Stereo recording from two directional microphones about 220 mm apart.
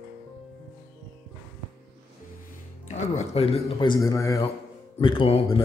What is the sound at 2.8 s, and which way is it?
A man's voice, 30° left (ahead or behind).